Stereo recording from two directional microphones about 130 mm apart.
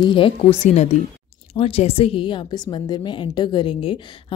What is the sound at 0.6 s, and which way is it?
Speech, 60° left (ahead or behind).